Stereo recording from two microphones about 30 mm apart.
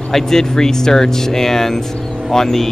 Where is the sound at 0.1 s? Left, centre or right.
Centre.